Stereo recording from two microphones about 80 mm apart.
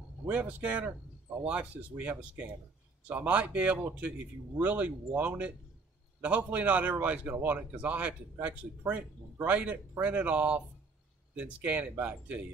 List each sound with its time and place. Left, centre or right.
0.3 s a man's voice: right